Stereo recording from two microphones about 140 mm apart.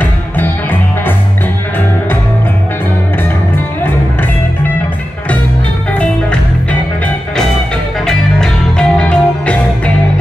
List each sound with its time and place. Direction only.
0.0 s music: 15° left (ahead or behind)
5.9 s music: 10° left (ahead or behind)